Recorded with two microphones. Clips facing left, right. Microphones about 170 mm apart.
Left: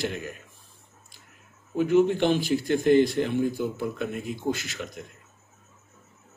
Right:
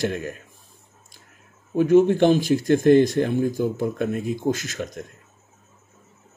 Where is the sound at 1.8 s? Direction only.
45° right (ahead or behind).